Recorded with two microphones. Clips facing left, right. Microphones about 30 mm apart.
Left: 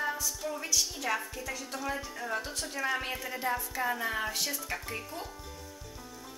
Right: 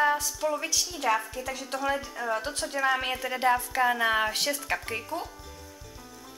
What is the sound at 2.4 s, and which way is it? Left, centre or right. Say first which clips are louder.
Speech: right 6 dB; right.